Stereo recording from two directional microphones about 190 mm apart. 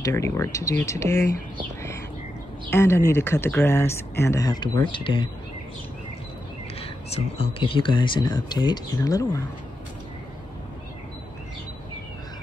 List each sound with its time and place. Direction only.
0.0 s speech: 15° left (ahead or behind)
2.7 s speech: 15° left (ahead or behind)
6.8 s speech: 30° left (ahead or behind)